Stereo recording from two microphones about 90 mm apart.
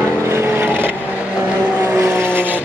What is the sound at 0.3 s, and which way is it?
Vehicle, 25° right (ahead or behind).